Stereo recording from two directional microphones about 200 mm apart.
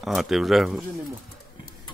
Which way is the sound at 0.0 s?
Centre (ahead or behind).